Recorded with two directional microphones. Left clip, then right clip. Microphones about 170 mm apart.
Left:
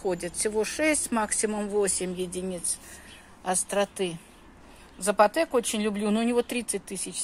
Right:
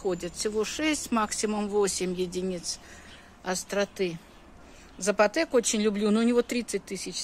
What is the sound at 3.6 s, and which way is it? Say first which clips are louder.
Speech: right 1 dB; 5° right (ahead or behind).